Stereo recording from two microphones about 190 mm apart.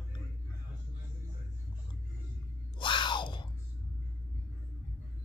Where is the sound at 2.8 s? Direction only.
25° left (ahead or behind).